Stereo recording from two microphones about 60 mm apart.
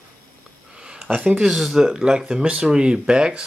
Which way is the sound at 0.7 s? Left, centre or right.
Centre.